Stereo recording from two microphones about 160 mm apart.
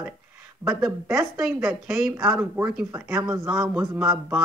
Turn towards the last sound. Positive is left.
turn(degrees=-5)  # may be behind; listen again after turning